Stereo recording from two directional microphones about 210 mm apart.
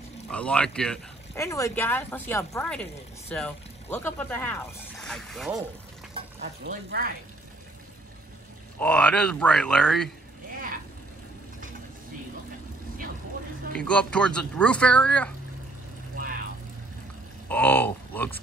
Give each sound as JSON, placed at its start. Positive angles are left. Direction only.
{"t": 0.3, "sound": "speech", "side_deg": 5}
{"t": 1.4, "sound": "speech", "side_deg": 15}
{"t": 6.7, "sound": "speech", "side_deg": -45}
{"t": 8.7, "sound": "speech", "side_deg": 5}
{"t": 13.7, "sound": "speech", "side_deg": 5}
{"t": 16.2, "sound": "vehicle", "side_deg": -45}
{"t": 17.5, "sound": "speech", "side_deg": 10}